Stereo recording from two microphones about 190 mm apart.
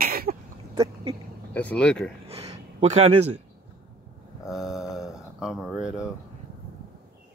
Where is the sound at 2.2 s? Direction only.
35° right (ahead or behind).